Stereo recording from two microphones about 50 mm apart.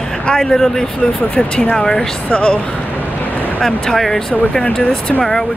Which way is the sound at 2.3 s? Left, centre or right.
Left.